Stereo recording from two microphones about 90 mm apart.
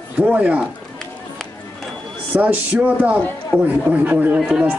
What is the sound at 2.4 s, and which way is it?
Speech, 15° right (ahead or behind).